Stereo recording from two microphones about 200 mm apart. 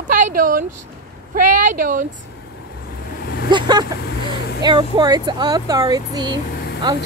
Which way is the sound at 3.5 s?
20° right (ahead or behind).